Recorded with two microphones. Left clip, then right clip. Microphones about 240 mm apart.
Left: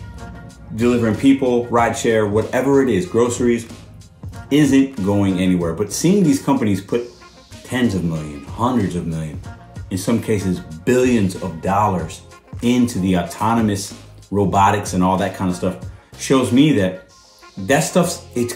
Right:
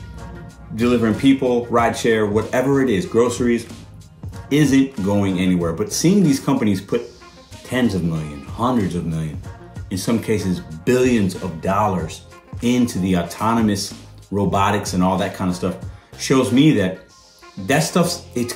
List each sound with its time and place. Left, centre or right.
0.7 s speech: centre